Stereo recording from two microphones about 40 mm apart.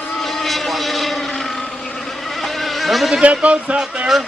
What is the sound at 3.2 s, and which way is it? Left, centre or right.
Speech, right.